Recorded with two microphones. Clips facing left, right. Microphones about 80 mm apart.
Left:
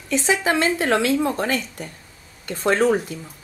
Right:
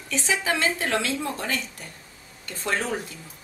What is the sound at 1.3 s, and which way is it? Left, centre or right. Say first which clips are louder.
Speech: left 6 dB; left.